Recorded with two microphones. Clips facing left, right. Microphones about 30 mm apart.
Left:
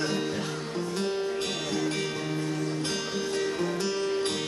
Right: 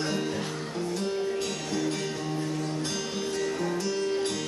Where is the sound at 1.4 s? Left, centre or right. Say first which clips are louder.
Left 1 dB; left.